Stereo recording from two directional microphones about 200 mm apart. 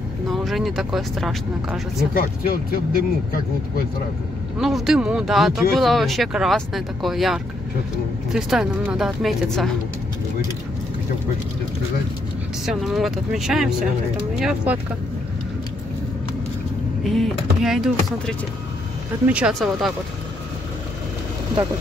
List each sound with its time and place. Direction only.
0.3 s speech: centre (ahead or behind)
2.1 s speech: 50° left (ahead or behind)
4.6 s speech: centre (ahead or behind)
12.6 s speech: centre (ahead or behind)
17.0 s speech: centre (ahead or behind)